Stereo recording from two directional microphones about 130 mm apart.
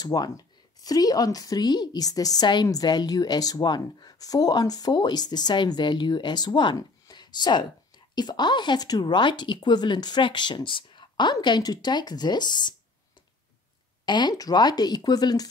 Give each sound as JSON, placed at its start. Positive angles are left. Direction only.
{"t": 0.0, "sound": "a woman's voice", "side_deg": 30}
{"t": 14.0, "sound": "a woman's voice", "side_deg": 35}